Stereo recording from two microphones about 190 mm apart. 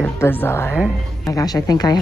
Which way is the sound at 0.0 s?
10° left (ahead or behind).